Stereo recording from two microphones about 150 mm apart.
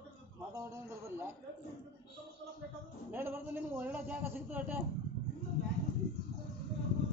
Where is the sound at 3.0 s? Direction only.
15° right (ahead or behind).